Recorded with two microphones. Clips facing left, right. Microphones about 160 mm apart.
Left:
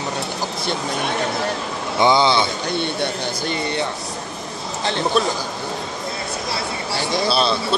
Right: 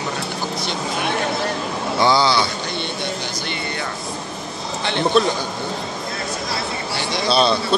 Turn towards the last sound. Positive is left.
turn(degrees=5)  # may be behind; listen again after turning